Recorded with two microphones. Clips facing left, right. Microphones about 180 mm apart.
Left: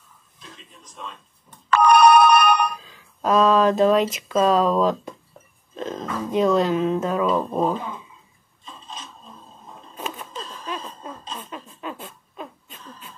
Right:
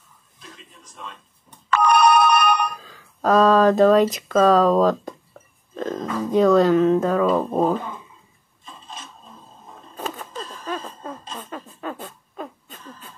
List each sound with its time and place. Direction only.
1.7 s telephone bell ringing: 55° left (ahead or behind)
2.8 s speech: 45° right (ahead or behind)
10.0 s a sound: 40° right (ahead or behind)